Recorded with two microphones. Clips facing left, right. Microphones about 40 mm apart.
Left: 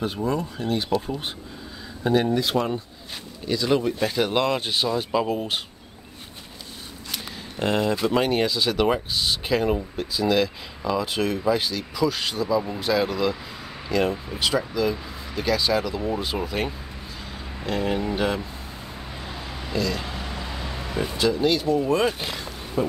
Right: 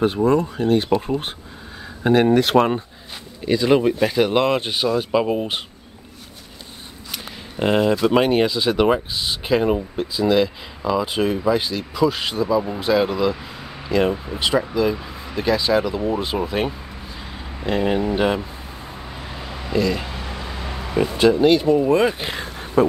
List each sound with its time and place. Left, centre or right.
0.0 s speech: right
3.4 s speech: right
7.1 s a sound: centre
8.1 s speech: right
19.7 s speech: right
22.8 s speech: right